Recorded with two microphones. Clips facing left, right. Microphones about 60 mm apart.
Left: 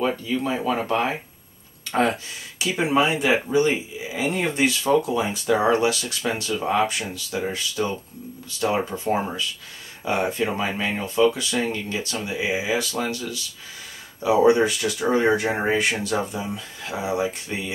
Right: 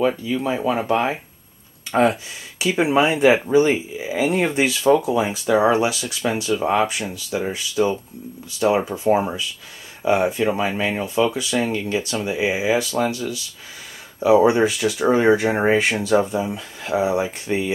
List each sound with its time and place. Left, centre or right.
0.0 s speech: centre
2.6 s speech: right